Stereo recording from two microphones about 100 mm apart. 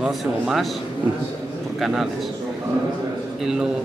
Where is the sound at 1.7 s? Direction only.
5° right (ahead or behind).